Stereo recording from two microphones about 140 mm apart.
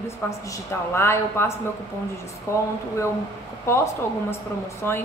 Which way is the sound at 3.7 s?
20° left (ahead or behind).